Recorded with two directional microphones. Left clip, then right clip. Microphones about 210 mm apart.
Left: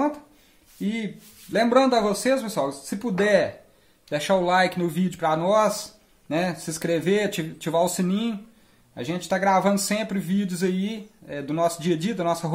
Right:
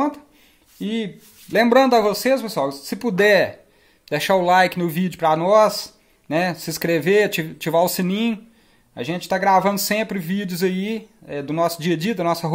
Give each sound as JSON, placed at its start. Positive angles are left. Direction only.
{"t": 0.7, "sound": "a man's voice", "side_deg": -30}